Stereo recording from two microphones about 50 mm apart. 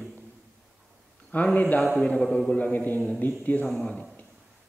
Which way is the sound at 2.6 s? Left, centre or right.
Left.